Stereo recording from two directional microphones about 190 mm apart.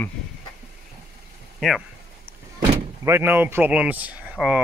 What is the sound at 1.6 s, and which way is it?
Speech, centre (ahead or behind).